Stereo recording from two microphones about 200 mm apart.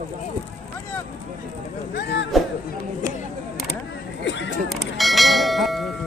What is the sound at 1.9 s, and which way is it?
Speech, 60° left (ahead or behind).